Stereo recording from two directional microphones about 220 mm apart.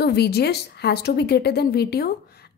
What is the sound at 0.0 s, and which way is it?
A woman's voice, 45° left (ahead or behind).